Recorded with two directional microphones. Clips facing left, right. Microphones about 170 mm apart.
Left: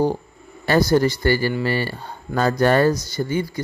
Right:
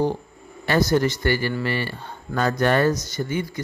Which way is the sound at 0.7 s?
35° left (ahead or behind).